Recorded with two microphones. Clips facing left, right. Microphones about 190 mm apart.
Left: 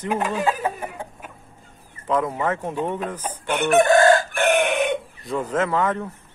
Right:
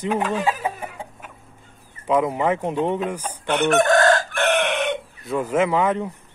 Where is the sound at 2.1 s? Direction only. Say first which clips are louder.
Right 3 dB; 15° right (ahead or behind).